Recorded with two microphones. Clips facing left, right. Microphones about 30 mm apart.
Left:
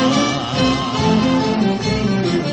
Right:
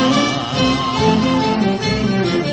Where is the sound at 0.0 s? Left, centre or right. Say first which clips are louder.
Right 1 dB; centre.